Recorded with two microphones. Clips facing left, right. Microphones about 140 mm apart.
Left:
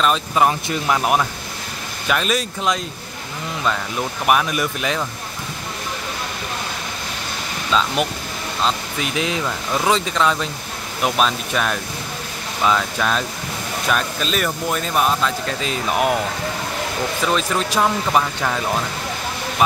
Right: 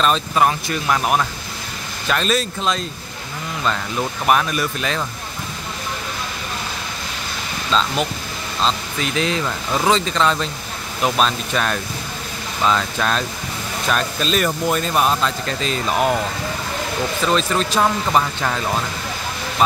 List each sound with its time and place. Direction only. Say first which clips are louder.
0.0 s speech: even; 10° left (ahead or behind)
4.3 s speech: even; 15° left (ahead or behind)
7.7 s speech: even; 10° left (ahead or behind)
17.3 s speech: right 3 dB; 10° left (ahead or behind)